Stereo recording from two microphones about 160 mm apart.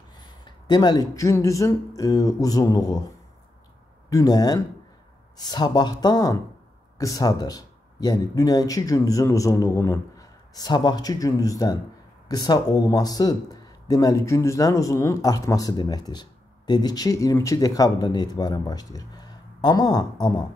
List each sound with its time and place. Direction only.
0.5 s speech: 25° left (ahead or behind)
4.1 s speech: 25° left (ahead or behind)